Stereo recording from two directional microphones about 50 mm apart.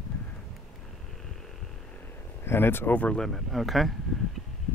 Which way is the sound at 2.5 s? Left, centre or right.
Left.